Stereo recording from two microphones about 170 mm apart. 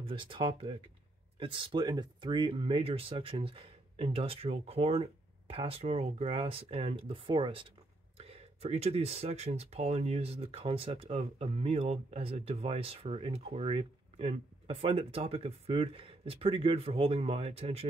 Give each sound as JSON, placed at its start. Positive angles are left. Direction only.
{"t": 0.0, "sound": "speech", "side_deg": -30}